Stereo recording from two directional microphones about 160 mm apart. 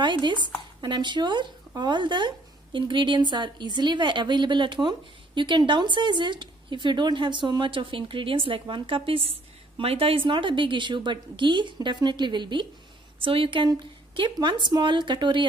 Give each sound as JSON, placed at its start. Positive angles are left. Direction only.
{"t": 0.0, "sound": "a woman's voice", "side_deg": -30}